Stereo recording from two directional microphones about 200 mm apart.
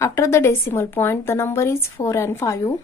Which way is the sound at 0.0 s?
15° left (ahead or behind).